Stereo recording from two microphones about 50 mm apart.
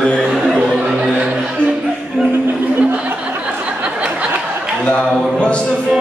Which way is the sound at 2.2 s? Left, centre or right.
Centre.